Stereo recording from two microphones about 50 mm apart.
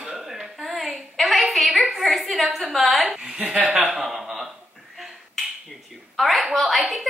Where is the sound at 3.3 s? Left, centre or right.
Centre.